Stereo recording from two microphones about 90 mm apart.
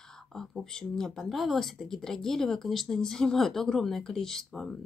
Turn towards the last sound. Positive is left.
turn(degrees=5)  # may be behind; listen again after turning